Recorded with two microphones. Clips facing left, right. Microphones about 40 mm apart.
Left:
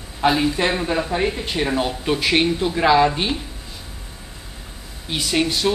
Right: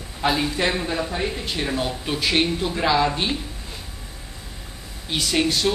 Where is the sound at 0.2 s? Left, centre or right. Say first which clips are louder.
Left 4 dB; centre.